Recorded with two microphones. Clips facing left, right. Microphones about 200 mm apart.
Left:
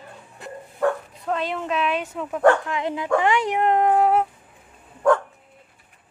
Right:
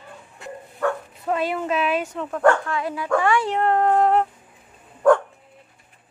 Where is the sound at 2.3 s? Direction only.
15° left (ahead or behind).